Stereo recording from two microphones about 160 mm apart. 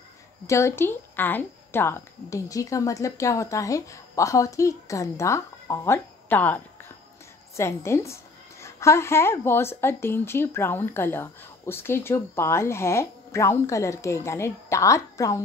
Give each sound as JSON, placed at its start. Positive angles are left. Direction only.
{"t": 0.5, "sound": "a woman's voice", "side_deg": 15}